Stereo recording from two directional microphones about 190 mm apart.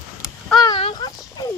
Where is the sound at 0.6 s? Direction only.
25° left (ahead or behind).